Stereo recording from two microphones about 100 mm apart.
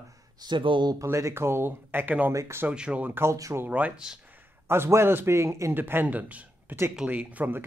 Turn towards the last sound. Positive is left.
turn(degrees=-15)  # may be behind; listen again after turning